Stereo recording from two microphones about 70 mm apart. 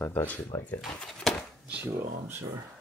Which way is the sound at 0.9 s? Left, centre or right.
Centre.